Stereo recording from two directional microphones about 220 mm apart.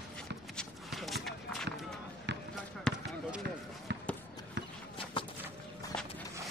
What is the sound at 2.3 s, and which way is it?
Basketball bounce, 50° right (ahead or behind).